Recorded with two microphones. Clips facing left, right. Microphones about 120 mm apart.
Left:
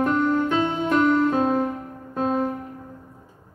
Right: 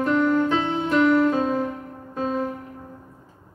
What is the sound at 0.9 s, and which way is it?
Music, 50° left (ahead or behind).